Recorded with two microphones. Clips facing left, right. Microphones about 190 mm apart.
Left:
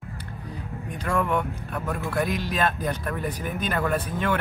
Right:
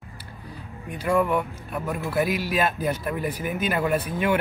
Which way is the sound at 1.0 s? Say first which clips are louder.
Right 3 dB; 5° right (ahead or behind).